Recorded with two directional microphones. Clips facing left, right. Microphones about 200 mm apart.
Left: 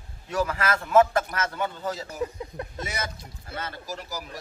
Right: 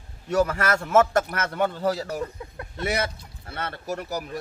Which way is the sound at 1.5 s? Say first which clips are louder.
Right 6 dB; 65° right (ahead or behind).